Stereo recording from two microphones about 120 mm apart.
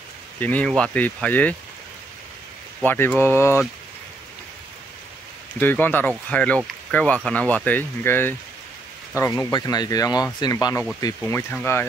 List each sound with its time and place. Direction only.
0.4 s speech: 10° left (ahead or behind)
2.8 s speech: 15° left (ahead or behind)
5.6 s speech: 15° left (ahead or behind)
9.5 s speech: 35° left (ahead or behind)